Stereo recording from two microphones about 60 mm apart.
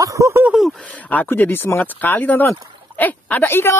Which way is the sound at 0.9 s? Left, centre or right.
Left.